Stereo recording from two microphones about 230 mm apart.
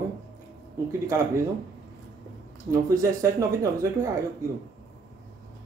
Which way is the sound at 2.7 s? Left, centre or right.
Centre.